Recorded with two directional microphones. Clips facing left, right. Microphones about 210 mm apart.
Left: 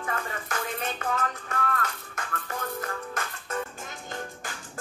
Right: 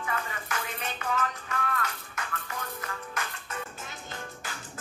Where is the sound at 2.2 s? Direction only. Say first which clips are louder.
Left 3 dB; 45° left (ahead or behind).